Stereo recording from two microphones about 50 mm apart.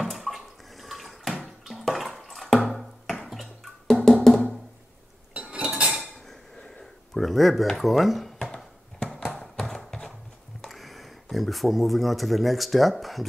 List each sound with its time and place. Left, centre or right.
0.0 s water: centre
1.7 s bathtub: centre
2.4 s a sound: centre
3.3 s music: centre
5.3 s cutlery: right
6.8 s speech: centre
9.2 s a sound: centre
10.6 s speech: centre